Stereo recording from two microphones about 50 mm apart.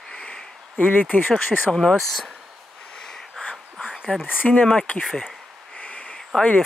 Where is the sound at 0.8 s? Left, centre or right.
Left.